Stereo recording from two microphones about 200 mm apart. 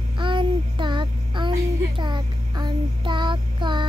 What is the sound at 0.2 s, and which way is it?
Child singing, 25° right (ahead or behind).